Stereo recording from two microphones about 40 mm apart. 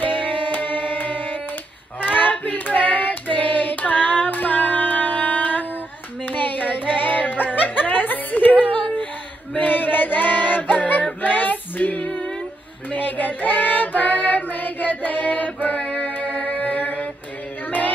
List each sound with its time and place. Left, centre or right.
0.0 s music: left
2.3 s child singing: left
6.2 s hands: left
7.0 s music: left
9.6 s female singing: left
12.9 s child singing: left
16.2 s music: left